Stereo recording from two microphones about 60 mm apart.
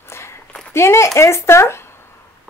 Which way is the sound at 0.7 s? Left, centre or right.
Left.